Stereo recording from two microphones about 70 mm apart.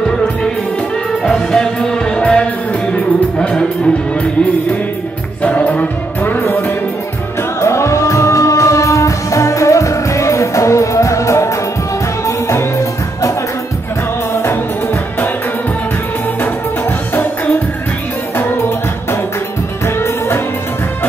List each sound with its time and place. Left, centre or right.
1.2 s music: centre; by 6.4 s left
7.6 s music: left
14.3 s music: left
20.0 s music: left